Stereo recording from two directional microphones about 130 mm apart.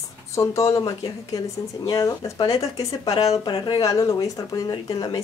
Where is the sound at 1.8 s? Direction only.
30° left (ahead or behind).